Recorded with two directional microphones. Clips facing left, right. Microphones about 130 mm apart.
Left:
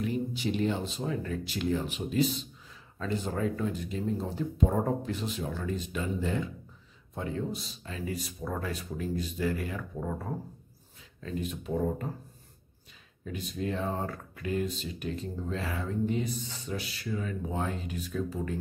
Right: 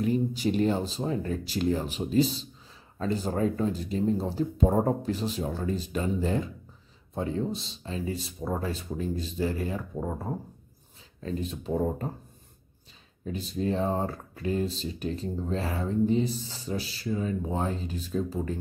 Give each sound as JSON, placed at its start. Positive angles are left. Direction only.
{"t": 0.0, "sound": "speech", "side_deg": -40}
{"t": 13.2, "sound": "speech", "side_deg": -30}